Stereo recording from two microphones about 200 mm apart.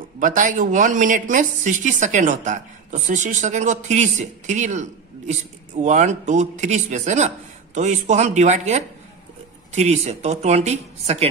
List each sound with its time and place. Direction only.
0.2 s speech: 40° right (ahead or behind)